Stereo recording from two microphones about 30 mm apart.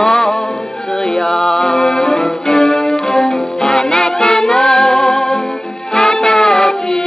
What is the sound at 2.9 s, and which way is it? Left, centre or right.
Music, centre.